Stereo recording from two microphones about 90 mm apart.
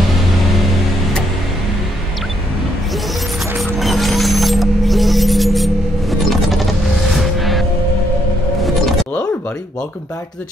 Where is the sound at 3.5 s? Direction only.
Centre (ahead or behind).